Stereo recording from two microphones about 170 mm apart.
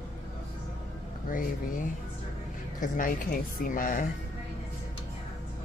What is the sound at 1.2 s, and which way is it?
Speech, 55° left (ahead or behind).